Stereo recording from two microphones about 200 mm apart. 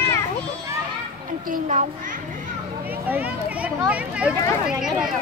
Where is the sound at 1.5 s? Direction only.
35° right (ahead or behind).